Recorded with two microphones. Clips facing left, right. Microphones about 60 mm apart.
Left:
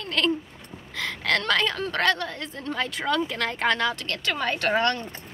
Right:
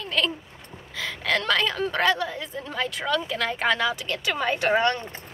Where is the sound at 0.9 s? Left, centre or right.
Centre.